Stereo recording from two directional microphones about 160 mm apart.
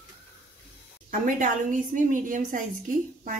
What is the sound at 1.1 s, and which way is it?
A woman's voice, 55° right (ahead or behind).